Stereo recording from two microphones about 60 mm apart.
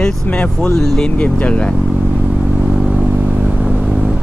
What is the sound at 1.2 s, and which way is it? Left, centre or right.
Speech, left.